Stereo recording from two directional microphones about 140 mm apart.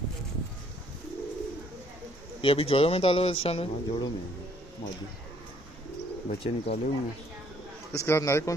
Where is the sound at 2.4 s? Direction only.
40° left (ahead or behind).